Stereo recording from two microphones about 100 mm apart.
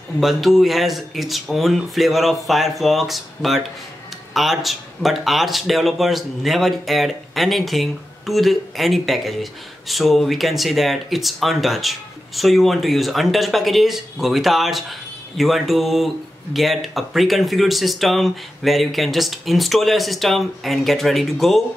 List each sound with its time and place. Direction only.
0.2 s speech: centre (ahead or behind)